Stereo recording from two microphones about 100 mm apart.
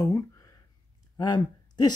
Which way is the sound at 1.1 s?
45° left (ahead or behind).